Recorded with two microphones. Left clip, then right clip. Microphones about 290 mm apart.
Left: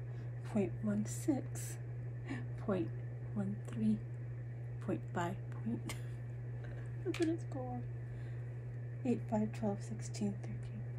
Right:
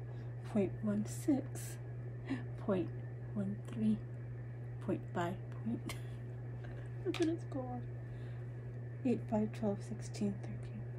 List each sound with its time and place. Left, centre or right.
0.5 s a woman's voice: centre
2.2 s a sound: centre
3.3 s a woman's voice: centre
7.1 s speech: centre
9.0 s a woman's voice: centre